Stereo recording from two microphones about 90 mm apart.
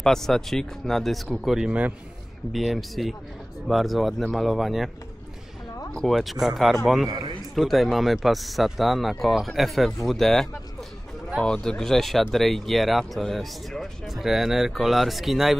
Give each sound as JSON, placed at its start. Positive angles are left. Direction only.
{"t": 0.0, "sound": "speech", "side_deg": 5}
{"t": 2.5, "sound": "speech", "side_deg": 0}
{"t": 7.1, "sound": "a man's voice", "side_deg": -45}
{"t": 7.5, "sound": "speech", "side_deg": 0}